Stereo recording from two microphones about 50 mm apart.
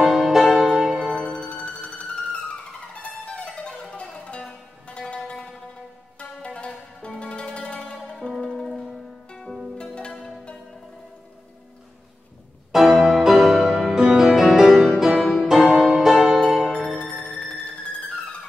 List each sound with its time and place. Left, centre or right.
0.0 s music: centre
1.1 s music: centre
5.2 s music: centre
7.8 s zither: centre
8.3 s music: centre
9.8 s pizzicato: centre
12.7 s music: centre
17.0 s music: centre